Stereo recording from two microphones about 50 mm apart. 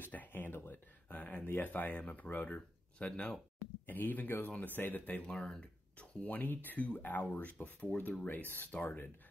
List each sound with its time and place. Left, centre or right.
0.0 s a sound: left
0.7 s speech: left
3.8 s speech: left
5.2 s speech: centre; by 9.1 s left